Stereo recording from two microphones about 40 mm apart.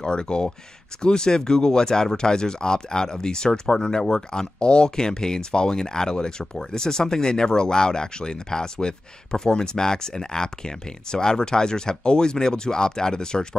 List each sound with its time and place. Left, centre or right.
0.0 s speech: left